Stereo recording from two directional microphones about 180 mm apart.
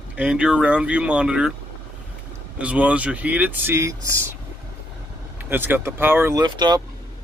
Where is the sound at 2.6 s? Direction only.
5° right (ahead or behind).